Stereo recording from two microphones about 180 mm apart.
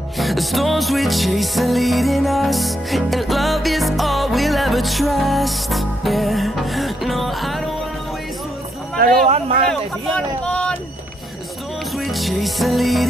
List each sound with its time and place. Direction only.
0.2 s music: centre (ahead or behind)
8.9 s speech: 55° right (ahead or behind)
9.7 s speech: 5° left (ahead or behind)
12.0 s music: centre (ahead or behind)